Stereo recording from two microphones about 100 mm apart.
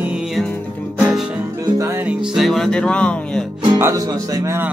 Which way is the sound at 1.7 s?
30° right (ahead or behind).